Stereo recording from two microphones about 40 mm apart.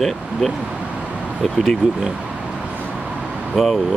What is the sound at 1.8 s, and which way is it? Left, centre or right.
Speech, centre.